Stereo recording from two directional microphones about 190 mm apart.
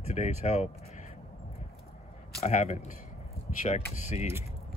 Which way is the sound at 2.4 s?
35° left (ahead or behind).